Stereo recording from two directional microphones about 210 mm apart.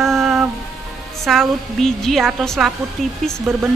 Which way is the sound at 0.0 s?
Centre (ahead or behind).